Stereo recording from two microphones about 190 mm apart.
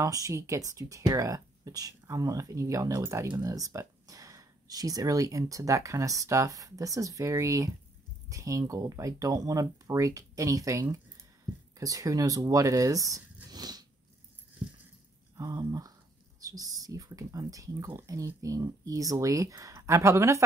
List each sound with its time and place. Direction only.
0.0 s speech: 15° right (ahead or behind)
15.3 s speech: 20° right (ahead or behind)